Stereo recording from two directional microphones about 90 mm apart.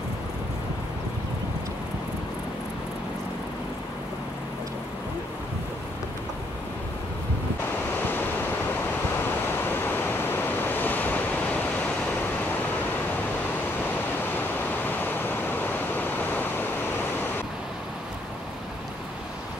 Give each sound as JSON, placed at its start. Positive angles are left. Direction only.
{"t": 8.0, "sound": "waves", "side_deg": 20}
{"t": 14.3, "sound": "waves", "side_deg": 20}